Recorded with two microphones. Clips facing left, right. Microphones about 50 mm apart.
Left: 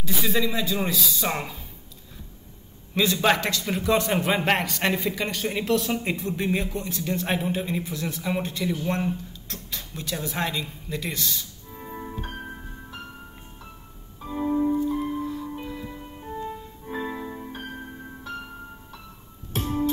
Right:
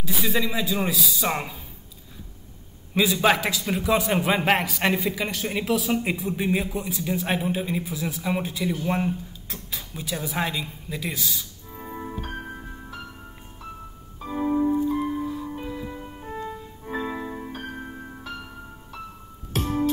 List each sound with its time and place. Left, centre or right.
0.0 s a man's voice: centre
2.9 s a man's voice: centre
14.2 s music: centre
16.4 s music: centre
19.6 s music: centre